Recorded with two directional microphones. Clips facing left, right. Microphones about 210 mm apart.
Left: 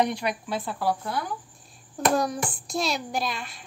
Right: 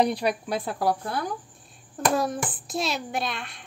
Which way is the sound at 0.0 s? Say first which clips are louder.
Right 2 dB; 35° right (ahead or behind).